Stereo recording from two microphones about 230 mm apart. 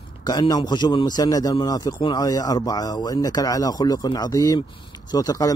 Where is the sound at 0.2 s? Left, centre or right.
Centre.